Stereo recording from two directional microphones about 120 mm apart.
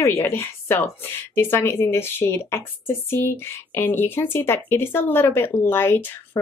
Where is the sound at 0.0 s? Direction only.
25° left (ahead or behind).